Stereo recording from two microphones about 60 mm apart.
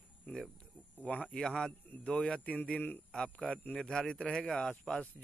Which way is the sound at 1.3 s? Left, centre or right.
Centre.